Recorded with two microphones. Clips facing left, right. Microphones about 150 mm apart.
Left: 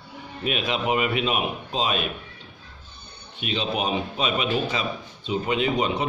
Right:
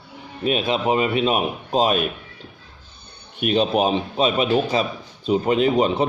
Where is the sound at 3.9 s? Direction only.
35° right (ahead or behind).